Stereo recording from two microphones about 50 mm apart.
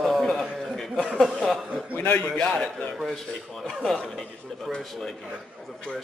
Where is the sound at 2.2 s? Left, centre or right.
Left.